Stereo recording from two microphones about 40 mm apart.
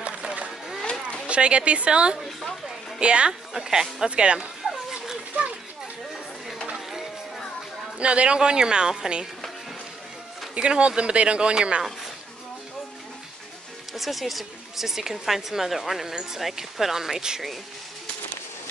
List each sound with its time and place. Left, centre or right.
0.5 s a sound: centre
1.2 s speech: right
3.5 s speech: centre
4.1 s speech: right
8.0 s speech: right
10.5 s speech: right
13.9 s speech: centre